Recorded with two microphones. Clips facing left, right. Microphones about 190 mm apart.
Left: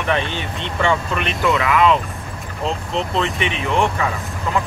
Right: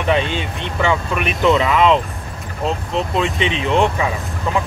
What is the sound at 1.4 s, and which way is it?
Speech, 25° right (ahead or behind).